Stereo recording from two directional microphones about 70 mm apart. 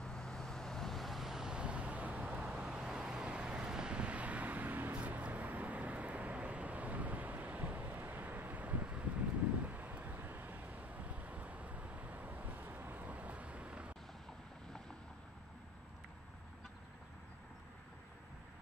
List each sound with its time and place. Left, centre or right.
0.0 s vehicle: centre; by 2.4 s right
2.4 s vehicle: centre